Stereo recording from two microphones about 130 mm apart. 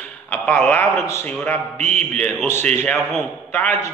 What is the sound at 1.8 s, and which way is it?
Speech, 60° right (ahead or behind).